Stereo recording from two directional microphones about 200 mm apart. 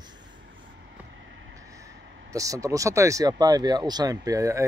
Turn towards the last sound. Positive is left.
turn(degrees=-15)  # may be behind; listen again after turning